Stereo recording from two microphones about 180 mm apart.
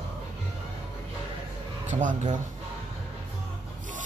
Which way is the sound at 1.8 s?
40° right (ahead or behind).